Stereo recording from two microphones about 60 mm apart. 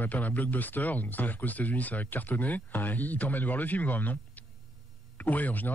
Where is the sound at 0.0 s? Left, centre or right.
Left.